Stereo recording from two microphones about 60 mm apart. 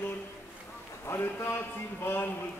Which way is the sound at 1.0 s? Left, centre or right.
Left.